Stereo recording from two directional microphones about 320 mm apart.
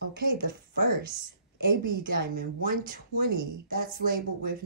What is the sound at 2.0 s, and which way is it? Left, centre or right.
Speech, right.